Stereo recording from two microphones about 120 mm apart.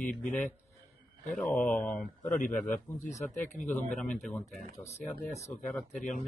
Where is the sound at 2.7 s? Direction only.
90° left.